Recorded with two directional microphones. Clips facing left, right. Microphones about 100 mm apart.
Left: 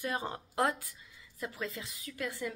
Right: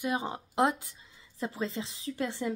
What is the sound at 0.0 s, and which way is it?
Speech, 15° right (ahead or behind).